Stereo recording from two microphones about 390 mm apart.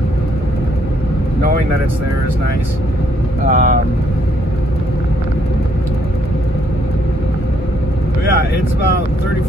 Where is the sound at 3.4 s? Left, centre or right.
Right.